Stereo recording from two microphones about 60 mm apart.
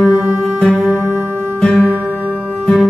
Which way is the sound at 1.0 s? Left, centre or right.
Right.